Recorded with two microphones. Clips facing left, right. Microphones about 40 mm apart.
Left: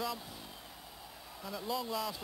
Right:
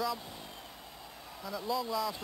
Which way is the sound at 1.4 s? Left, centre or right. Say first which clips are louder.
Right 3 dB; centre.